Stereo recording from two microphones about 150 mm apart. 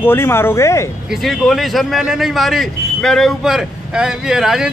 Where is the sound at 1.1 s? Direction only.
Centre (ahead or behind).